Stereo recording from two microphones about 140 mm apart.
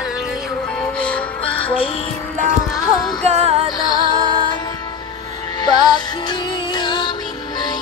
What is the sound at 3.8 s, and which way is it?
Music, 30° left (ahead or behind).